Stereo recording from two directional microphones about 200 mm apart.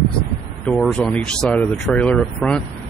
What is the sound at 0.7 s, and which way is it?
Speech, centre (ahead or behind).